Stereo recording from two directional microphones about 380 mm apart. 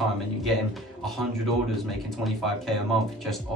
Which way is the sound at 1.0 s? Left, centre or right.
Centre.